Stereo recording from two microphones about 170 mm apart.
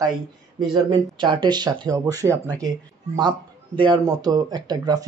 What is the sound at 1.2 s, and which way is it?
Speech, 30° right (ahead or behind).